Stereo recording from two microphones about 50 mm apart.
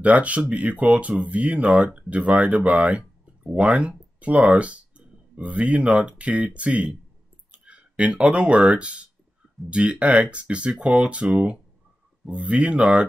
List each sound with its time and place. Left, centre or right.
0.0 s speech: right